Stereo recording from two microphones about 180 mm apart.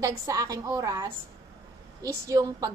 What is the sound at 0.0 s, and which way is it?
A woman's voice, 20° right (ahead or behind).